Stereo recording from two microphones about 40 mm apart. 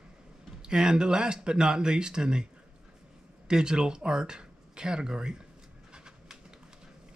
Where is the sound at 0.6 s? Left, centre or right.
Right.